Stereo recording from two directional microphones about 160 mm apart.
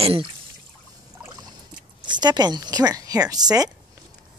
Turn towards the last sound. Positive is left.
turn(degrees=-25)  # may be behind; listen again after turning